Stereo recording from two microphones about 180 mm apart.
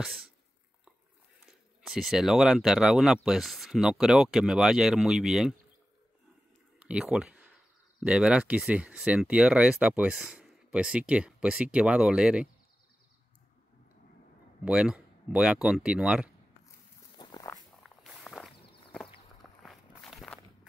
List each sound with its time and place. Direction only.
0.0 s speech: centre (ahead or behind)
1.4 s speech: centre (ahead or behind)
6.9 s speech: 5° right (ahead or behind)
14.6 s speech: 5° right (ahead or behind)
17.2 s a sound: 20° left (ahead or behind)
17.8 s walk: centre (ahead or behind)